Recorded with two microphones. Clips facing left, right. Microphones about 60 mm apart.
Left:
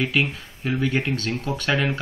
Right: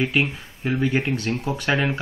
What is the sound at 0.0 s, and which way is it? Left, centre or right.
Speech, right.